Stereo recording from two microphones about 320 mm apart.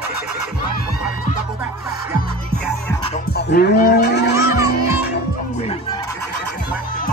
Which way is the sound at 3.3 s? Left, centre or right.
Left.